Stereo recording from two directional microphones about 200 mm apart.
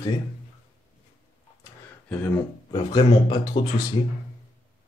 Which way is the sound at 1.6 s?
10° left (ahead or behind).